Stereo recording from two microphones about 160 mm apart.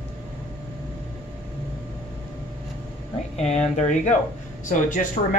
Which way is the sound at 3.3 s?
45° left (ahead or behind).